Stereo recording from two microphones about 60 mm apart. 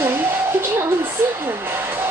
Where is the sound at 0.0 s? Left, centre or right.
Right.